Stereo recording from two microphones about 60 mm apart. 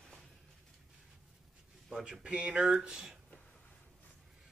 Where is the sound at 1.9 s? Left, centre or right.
Centre.